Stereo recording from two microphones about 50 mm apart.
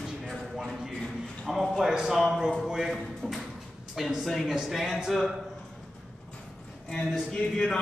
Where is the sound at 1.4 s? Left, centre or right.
Centre.